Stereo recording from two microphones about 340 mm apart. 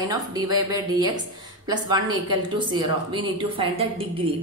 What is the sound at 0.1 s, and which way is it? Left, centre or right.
A woman's voice, centre.